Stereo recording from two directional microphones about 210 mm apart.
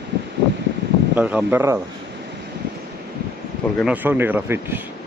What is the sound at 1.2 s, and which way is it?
Speech, 5° right (ahead or behind).